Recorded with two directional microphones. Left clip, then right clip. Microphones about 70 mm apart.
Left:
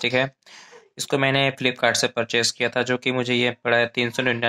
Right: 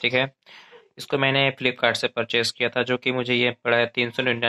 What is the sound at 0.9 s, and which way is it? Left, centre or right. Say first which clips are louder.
Speech: left 1 dB; left.